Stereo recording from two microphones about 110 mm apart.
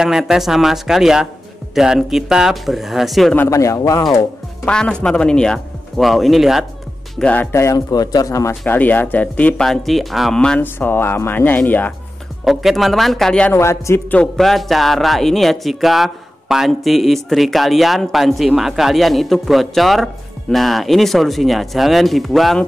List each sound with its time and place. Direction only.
0.0 s speech: 5° right (ahead or behind)
3.4 s speech: 30° left (ahead or behind)
4.6 s speech: 10° left (ahead or behind)
7.2 s speech: 10° left (ahead or behind)
7.5 s a man's voice: 30° left (ahead or behind)
8.6 s speech: 15° left (ahead or behind)
9.7 s speech: centre (ahead or behind)
10.6 s speech: 20° left (ahead or behind)
12.4 s speech: centre (ahead or behind)
13.5 s speech: 25° left (ahead or behind)
14.1 s speech: 5° left (ahead or behind)